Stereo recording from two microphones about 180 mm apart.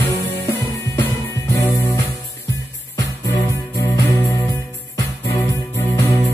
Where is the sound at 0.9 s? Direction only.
15° left (ahead or behind).